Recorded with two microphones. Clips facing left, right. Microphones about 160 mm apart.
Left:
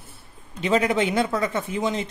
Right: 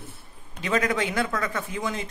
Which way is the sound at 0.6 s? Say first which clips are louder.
Left 4 dB; 25° left (ahead or behind).